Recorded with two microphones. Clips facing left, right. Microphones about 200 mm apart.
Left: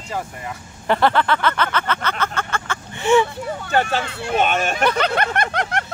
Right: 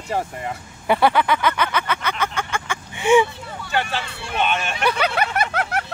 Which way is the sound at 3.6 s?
45° left (ahead or behind).